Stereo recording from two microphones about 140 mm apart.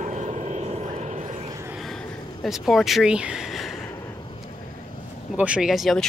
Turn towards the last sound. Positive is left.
turn(degrees=0)  # may be behind; listen again after turning